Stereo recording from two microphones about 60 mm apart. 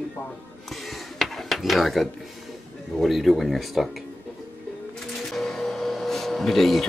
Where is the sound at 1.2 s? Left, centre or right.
Centre.